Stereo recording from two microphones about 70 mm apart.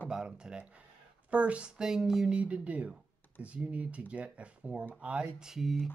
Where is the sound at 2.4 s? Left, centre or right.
Centre.